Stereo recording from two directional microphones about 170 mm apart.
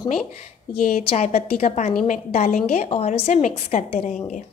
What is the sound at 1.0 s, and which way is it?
Speech, 40° left (ahead or behind).